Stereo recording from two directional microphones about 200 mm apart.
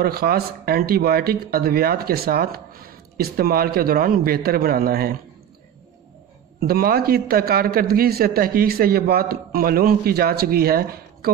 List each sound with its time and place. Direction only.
0.0 s speech: 50° right (ahead or behind)
6.6 s speech: 50° right (ahead or behind)